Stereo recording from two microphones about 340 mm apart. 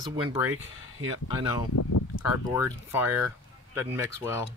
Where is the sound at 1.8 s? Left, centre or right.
Left.